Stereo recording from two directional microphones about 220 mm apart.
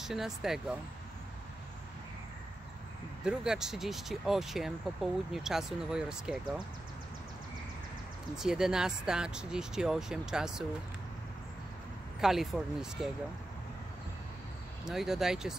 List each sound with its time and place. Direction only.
0.0 s speech: centre (ahead or behind)
3.3 s speech: 5° right (ahead or behind)
8.4 s speech: centre (ahead or behind)
12.2 s speech: centre (ahead or behind)
14.9 s speech: centre (ahead or behind)